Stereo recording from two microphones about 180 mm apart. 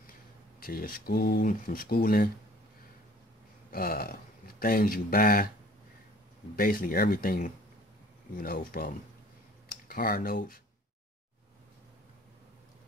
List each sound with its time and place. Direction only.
0.6 s speech: 55° left (ahead or behind)
3.7 s speech: 55° left (ahead or behind)
6.5 s speech: 55° left (ahead or behind)